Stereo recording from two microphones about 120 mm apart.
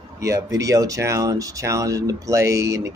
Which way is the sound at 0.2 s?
25° right (ahead or behind).